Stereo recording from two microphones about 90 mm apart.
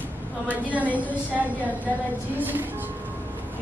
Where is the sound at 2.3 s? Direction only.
20° right (ahead or behind).